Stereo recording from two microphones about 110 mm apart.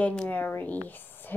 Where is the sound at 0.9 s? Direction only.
15° left (ahead or behind).